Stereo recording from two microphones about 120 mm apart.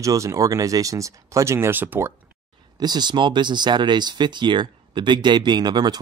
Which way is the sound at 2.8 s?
35° right (ahead or behind).